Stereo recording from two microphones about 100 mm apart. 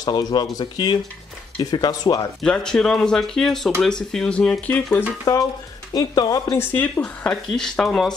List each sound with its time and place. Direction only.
0.0 s speech: 45° left (ahead or behind)
2.4 s speech: 5° left (ahead or behind)
5.9 s speech: 40° left (ahead or behind)
6.6 s speech: 20° left (ahead or behind)
7.0 s speech: 5° left (ahead or behind)